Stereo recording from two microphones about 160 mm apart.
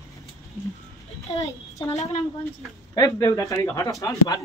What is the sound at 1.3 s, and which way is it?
Speech, 20° left (ahead or behind).